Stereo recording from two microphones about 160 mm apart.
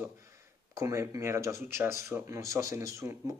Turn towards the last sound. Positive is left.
turn(degrees=-20)  # may be behind; listen again after turning